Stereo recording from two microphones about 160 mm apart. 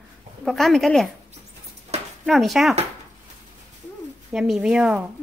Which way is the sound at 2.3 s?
Centre (ahead or behind).